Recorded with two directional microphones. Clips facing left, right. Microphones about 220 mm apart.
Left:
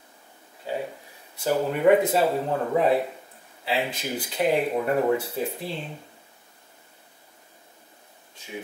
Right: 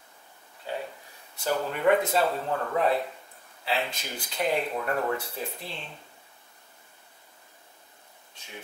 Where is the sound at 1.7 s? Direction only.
10° left (ahead or behind).